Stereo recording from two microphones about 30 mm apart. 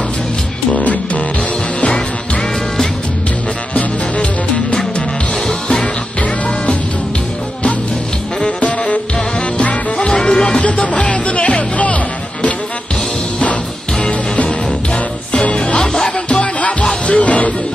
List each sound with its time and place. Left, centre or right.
3.7 s music: left
8.5 s music: left
9.9 s music: left
10.6 s music: left
14.0 s music: left
15.5 s music: left
15.8 s music: centre
17.1 s music: left